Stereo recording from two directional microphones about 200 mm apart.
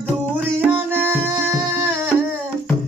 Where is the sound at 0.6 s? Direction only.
10° right (ahead or behind).